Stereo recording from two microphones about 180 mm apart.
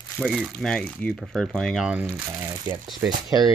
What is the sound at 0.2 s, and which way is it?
Speech, 5° right (ahead or behind).